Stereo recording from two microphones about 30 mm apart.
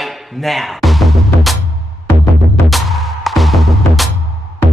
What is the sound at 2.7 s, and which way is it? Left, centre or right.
Music, centre.